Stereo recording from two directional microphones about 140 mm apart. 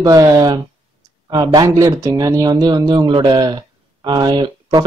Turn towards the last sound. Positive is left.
turn(degrees=-30)  # may be behind; listen again after turning